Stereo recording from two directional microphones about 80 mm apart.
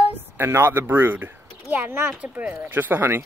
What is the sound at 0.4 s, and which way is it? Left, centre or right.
Speech, right.